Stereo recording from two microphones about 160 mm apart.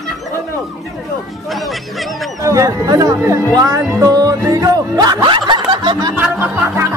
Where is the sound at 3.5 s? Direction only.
20° right (ahead or behind).